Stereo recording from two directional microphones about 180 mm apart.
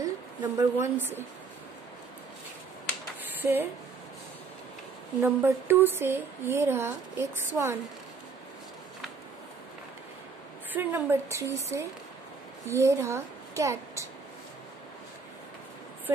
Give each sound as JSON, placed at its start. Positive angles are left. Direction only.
{"t": 0.0, "sound": "a woman's voice", "side_deg": -20}
{"t": 3.3, "sound": "speech", "side_deg": -10}
{"t": 5.2, "sound": "a woman's voice", "side_deg": -10}
{"t": 10.7, "sound": "a woman's voice", "side_deg": -10}